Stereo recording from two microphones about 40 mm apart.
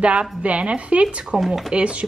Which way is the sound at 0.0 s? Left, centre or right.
Right.